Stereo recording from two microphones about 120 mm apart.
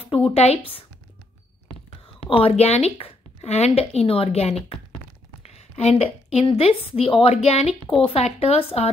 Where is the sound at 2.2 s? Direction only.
55° left (ahead or behind).